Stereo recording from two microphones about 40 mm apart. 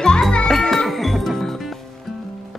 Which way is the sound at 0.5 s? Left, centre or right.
Centre.